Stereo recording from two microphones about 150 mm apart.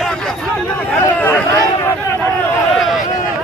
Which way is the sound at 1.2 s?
15° left (ahead or behind).